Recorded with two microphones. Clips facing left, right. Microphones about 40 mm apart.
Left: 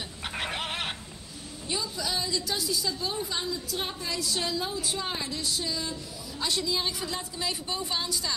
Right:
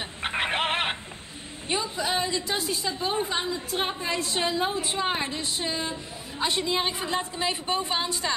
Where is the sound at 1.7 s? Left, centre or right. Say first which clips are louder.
Right 5 dB; right.